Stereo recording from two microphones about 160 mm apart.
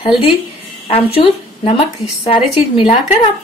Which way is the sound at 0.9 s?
35° left (ahead or behind).